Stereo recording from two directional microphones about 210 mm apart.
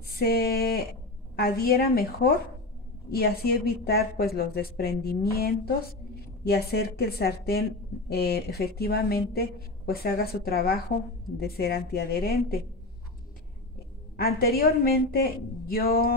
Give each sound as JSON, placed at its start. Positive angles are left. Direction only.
{"t": 0.2, "sound": "a woman's voice", "side_deg": 50}
{"t": 14.1, "sound": "a woman's voice", "side_deg": 45}